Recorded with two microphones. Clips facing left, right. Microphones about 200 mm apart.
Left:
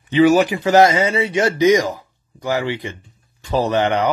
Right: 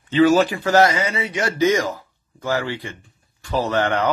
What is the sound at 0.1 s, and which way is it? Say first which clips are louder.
Speech: left 2 dB; 15° left (ahead or behind).